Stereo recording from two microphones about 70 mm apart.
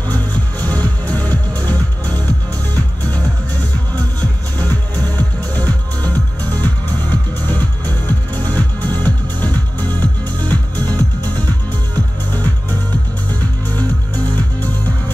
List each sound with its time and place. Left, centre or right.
0.6 s music: centre
3.9 s music: left